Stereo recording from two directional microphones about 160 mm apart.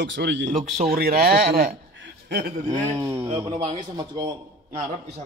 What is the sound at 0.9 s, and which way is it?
Speech, 70° right (ahead or behind).